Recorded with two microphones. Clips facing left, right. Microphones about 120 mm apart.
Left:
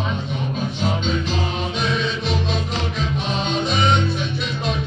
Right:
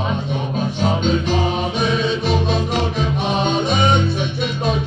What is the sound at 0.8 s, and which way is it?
Music, 50° right (ahead or behind).